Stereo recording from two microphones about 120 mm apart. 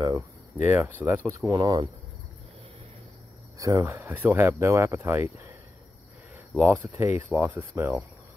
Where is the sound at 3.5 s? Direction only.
25° right (ahead or behind).